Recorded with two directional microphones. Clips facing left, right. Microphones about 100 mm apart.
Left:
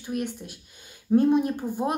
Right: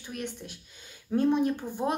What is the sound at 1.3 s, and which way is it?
Speech, 10° left (ahead or behind).